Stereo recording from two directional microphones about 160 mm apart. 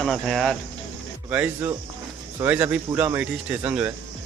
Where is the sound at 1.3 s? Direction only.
10° right (ahead or behind).